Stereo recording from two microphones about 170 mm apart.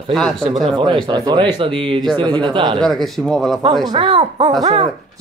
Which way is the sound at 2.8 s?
Centre (ahead or behind).